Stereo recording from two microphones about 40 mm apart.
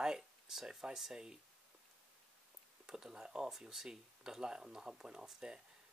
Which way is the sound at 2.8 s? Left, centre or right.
Centre.